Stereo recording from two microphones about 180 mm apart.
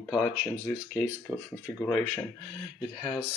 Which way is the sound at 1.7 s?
5° left (ahead or behind).